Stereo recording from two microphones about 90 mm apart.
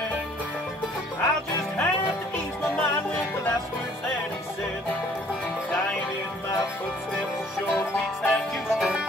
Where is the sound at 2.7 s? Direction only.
20° left (ahead or behind).